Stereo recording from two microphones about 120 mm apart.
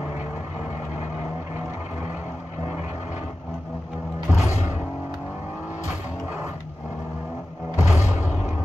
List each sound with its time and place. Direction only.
4.3 s music: 25° left (ahead or behind)
7.7 s music: 25° left (ahead or behind)